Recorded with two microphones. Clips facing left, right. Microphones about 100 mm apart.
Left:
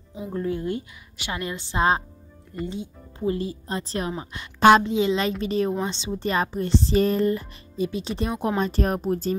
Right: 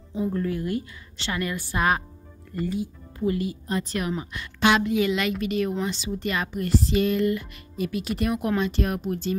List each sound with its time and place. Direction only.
0.3 s speech: 25° left (ahead or behind)
4.6 s a woman's voice: 40° left (ahead or behind)
4.8 s speech: 25° left (ahead or behind)
8.5 s speech: 40° left (ahead or behind)